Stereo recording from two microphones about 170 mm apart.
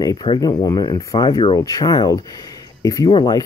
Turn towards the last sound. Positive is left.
turn(degrees=25)  # may be behind; listen again after turning